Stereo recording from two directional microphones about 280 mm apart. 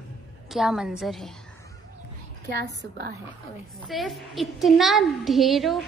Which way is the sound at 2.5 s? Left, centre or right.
Right.